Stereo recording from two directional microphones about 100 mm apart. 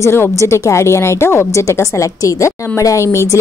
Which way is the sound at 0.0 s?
30° left (ahead or behind).